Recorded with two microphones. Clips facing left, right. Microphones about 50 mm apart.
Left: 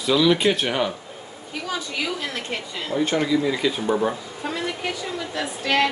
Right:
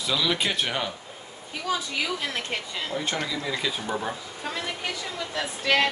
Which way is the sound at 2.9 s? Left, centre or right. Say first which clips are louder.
Left 10 dB; centre.